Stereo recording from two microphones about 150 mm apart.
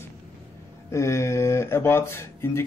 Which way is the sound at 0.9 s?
20° left (ahead or behind).